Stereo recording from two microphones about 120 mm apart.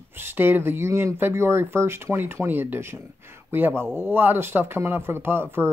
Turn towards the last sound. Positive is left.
turn(degrees=-20)  # may be behind; listen again after turning